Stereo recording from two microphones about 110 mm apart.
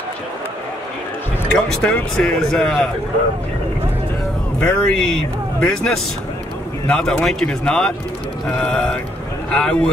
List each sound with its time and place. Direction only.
1.5 s speech: 10° left (ahead or behind)
4.6 s speech: 10° left (ahead or behind)